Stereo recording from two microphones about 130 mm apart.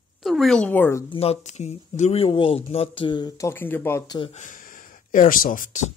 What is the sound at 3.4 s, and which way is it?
Speech, 15° left (ahead or behind).